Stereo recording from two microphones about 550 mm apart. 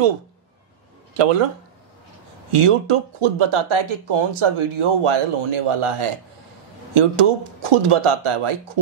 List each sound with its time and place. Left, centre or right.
1.1 s speech: right
2.5 s a man's voice: right